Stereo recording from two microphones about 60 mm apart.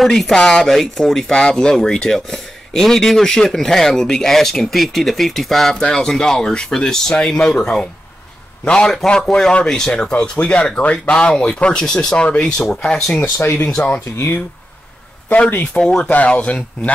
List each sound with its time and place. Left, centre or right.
0.0 s speech: centre
13.2 s speech: left
15.2 s speech: left